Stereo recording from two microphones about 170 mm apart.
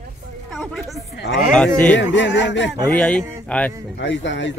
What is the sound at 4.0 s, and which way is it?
Speech, 90° left.